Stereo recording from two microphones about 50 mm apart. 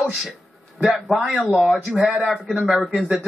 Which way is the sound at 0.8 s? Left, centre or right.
Centre.